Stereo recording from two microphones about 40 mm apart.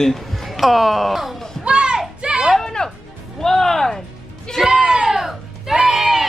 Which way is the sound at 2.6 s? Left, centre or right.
Centre.